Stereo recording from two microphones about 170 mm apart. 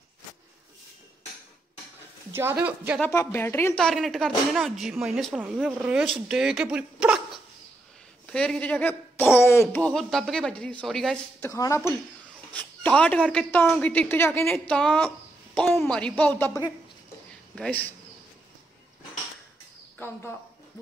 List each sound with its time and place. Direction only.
2.3 s speech: 15° right (ahead or behind)
3.1 s a woman's voice: 15° left (ahead or behind); by 7.2 s 5° right (ahead or behind)
8.3 s a woman's voice: 5° left (ahead or behind)
11.4 s a woman's voice: 20° left (ahead or behind)
12.5 s a woman's voice: 10° left (ahead or behind)
20.0 s a woman's voice: 10° left (ahead or behind)